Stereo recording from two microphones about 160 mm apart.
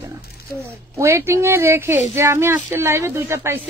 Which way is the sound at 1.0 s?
15° right (ahead or behind).